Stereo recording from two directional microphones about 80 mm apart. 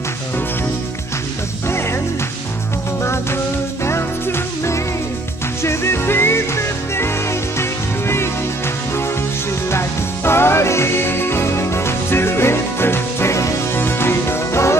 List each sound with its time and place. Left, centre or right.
1.7 s music: left
3.0 s music: left
9.7 s music: left